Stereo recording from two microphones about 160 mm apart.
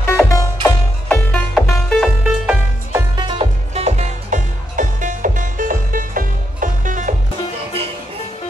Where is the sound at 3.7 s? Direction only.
45° right (ahead or behind).